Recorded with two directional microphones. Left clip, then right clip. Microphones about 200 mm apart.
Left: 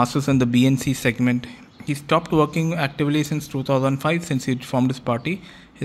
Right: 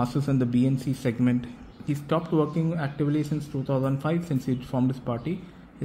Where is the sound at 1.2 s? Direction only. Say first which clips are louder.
Left 4 dB; 5° left (ahead or behind).